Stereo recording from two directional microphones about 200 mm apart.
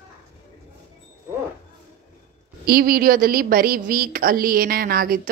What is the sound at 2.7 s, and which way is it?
A woman's voice, 45° right (ahead or behind).